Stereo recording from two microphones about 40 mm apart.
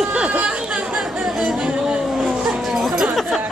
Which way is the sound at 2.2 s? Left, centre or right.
Centre.